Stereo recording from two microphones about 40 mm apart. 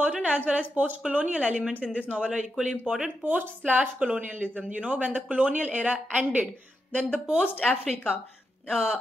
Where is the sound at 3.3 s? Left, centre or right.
Right.